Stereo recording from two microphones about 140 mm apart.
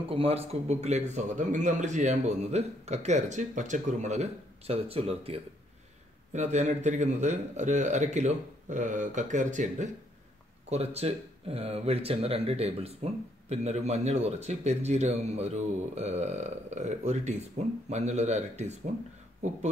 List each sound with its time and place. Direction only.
0.1 s a man's voice: 45° right (ahead or behind)
6.3 s a man's voice: 55° right (ahead or behind)
10.7 s speech: 45° right (ahead or behind)